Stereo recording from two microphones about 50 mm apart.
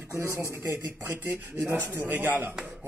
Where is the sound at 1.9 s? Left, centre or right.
Right.